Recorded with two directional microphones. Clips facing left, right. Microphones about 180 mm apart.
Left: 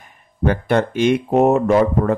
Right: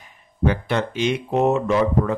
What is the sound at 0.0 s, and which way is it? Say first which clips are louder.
Speech: left 2 dB; 50° left (ahead or behind).